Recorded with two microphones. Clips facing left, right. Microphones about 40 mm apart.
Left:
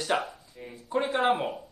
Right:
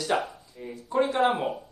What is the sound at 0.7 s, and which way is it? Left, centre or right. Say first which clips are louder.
Mantra: right 3 dB; centre.